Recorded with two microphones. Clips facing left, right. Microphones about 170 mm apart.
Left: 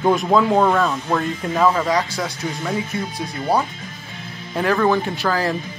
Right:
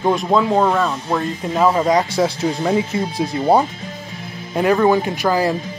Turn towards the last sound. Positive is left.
turn(degrees=-15)  # may be behind; listen again after turning